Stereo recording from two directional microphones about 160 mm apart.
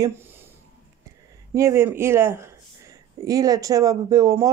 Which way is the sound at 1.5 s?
20° right (ahead or behind).